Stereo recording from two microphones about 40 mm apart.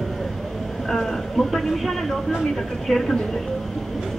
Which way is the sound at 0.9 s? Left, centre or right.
Centre.